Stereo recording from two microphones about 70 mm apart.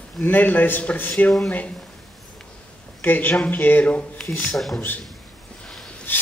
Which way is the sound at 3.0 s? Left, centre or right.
Left.